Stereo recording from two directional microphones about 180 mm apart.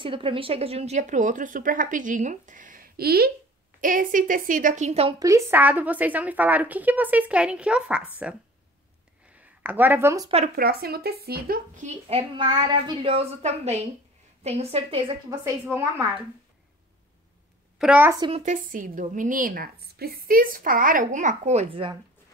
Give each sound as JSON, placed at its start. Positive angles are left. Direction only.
{"t": 0.0, "sound": "a woman's voice", "side_deg": -30}
{"t": 3.8, "sound": "a woman's voice", "side_deg": -50}
{"t": 5.2, "sound": "a woman's voice", "side_deg": -15}
{"t": 9.6, "sound": "a woman's voice", "side_deg": -10}
{"t": 10.5, "sound": "speech", "side_deg": -60}
{"t": 15.2, "sound": "a woman's voice", "side_deg": -15}
{"t": 17.7, "sound": "a woman's voice", "side_deg": -5}
{"t": 18.4, "sound": "a woman's voice", "side_deg": -45}